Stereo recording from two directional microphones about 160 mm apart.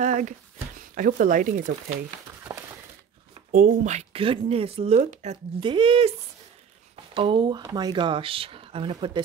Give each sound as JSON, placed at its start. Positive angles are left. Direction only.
{"t": 0.0, "sound": "a sound", "side_deg": -50}
{"t": 0.7, "sound": "speech", "side_deg": -55}
{"t": 2.5, "sound": "a sound", "side_deg": -15}
{"t": 3.5, "sound": "speech", "side_deg": -50}
{"t": 5.6, "sound": "speech", "side_deg": -30}
{"t": 7.2, "sound": "speech", "side_deg": -30}